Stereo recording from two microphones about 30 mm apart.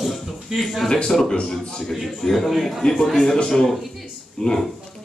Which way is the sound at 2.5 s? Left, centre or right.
Centre.